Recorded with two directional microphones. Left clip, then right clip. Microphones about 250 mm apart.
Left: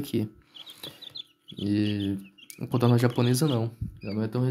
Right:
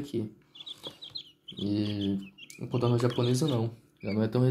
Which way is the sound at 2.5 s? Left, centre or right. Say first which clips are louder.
Left 4 dB; left.